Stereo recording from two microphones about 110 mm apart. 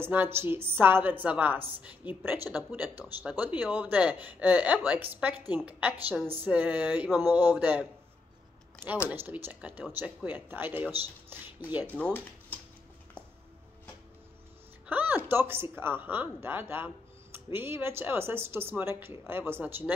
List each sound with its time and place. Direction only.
0.0 s speech: 20° right (ahead or behind)
9.1 s speech: 20° right (ahead or behind)
11.9 s speech: 15° left (ahead or behind)
14.9 s speech: 15° right (ahead or behind)